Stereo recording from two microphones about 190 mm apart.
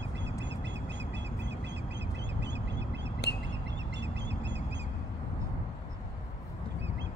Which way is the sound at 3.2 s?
60° left (ahead or behind).